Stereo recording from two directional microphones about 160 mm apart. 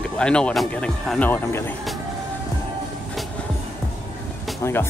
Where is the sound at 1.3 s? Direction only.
15° left (ahead or behind).